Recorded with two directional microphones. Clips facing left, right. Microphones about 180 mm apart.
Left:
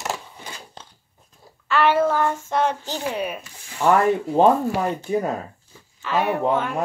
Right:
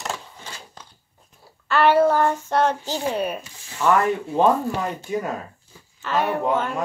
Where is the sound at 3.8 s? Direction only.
30° left (ahead or behind).